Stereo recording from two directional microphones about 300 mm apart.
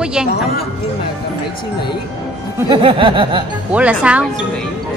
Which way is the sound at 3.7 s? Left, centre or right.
Centre.